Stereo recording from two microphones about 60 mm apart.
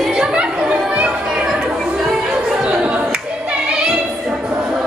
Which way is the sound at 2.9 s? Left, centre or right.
Centre.